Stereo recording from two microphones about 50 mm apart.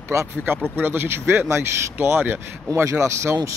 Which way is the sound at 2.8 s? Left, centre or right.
Right.